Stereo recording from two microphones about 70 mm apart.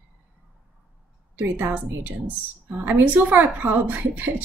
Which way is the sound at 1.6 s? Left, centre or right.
Right.